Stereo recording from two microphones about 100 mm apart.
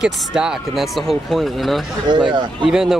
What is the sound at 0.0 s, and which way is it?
Speech, 5° right (ahead or behind).